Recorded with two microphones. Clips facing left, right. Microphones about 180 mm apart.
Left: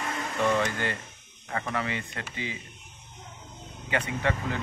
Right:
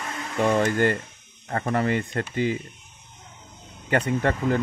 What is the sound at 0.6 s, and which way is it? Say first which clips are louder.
Speech: right 8 dB; 50° right (ahead or behind).